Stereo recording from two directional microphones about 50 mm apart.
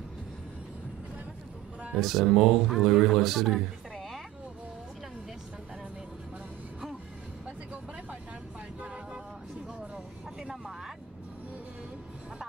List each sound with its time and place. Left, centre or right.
2.0 s speech: centre
8.8 s vehicle: right
9.8 s vehicle: centre